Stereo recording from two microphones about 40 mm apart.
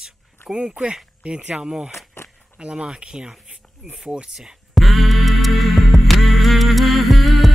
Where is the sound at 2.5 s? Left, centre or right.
Right.